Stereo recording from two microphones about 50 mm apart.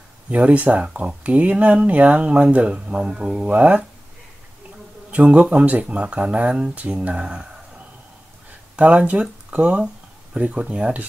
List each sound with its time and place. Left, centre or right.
0.3 s speech: right
3.5 s speech: right
5.1 s speech: right
8.7 s speech: right